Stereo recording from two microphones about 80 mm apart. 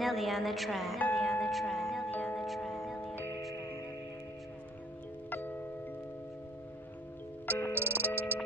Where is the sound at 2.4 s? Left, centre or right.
Centre.